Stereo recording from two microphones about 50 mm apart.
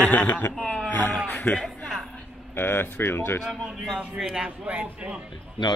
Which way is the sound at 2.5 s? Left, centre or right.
Left.